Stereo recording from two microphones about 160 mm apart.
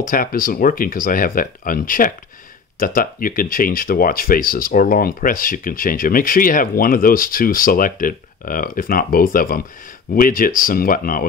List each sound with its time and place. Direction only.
0.1 s speech: 60° left (ahead or behind)